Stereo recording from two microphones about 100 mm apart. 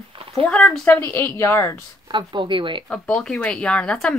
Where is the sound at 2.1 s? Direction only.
55° right (ahead or behind).